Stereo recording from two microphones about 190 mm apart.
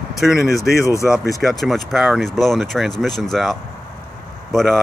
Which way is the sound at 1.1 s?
Centre (ahead or behind).